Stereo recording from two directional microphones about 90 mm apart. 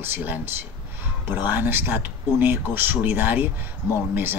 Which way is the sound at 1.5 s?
20° right (ahead or behind).